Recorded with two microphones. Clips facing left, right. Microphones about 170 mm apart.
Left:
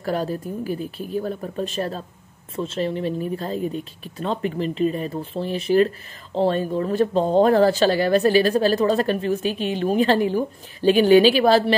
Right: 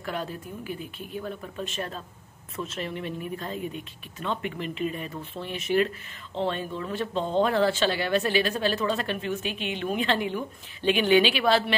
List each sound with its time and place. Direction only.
0.0 s speech: 40° left (ahead or behind)